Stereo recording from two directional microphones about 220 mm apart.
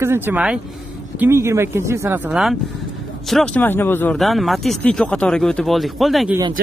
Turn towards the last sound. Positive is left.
turn(degrees=0)  # may be behind; listen again after turning